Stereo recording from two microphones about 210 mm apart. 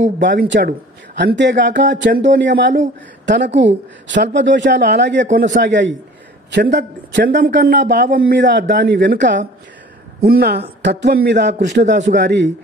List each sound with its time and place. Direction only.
0.2 s a man's voice: 55° right (ahead or behind)